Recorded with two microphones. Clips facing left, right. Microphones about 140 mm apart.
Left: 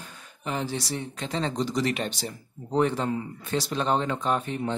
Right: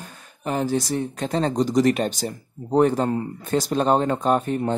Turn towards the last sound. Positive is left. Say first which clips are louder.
# right 6 dB
turn(degrees=-45)  # may be behind; listen again after turning